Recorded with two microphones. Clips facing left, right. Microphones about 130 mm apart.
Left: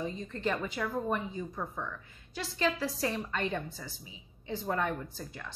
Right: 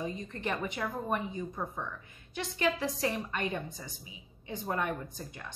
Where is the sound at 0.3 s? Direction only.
15° right (ahead or behind).